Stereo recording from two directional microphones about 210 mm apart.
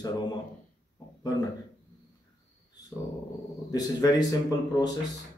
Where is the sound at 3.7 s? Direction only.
20° left (ahead or behind).